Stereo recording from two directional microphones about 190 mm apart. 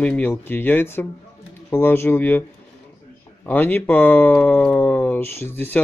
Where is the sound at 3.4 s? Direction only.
10° left (ahead or behind).